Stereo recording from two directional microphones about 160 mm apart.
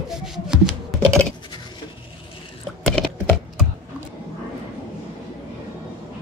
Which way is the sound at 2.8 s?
Centre (ahead or behind).